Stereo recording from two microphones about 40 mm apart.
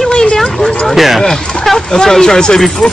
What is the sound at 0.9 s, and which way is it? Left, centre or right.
Speech, centre.